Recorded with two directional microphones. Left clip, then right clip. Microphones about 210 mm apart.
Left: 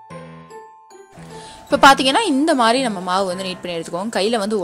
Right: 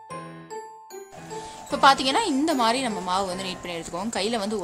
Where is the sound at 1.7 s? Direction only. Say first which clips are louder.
Left 7 dB; 30° left (ahead or behind).